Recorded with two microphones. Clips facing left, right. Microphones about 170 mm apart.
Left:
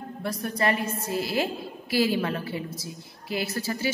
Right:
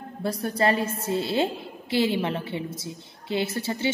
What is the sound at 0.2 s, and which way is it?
A woman's voice, 30° right (ahead or behind).